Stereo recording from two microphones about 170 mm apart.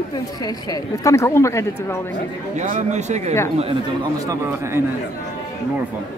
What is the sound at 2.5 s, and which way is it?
Speech, 45° right (ahead or behind).